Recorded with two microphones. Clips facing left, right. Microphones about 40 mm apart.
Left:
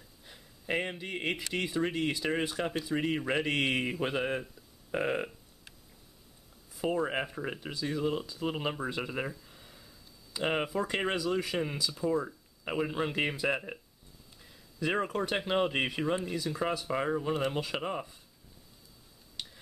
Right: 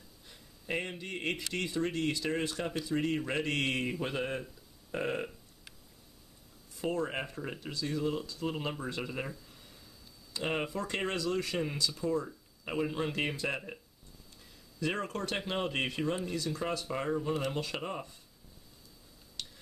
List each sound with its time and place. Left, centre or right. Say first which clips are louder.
0.3 s speech: left 3 dB; centre
6.7 s speech: left 3 dB; centre
19.3 s tick-tock: left 1 dB; centre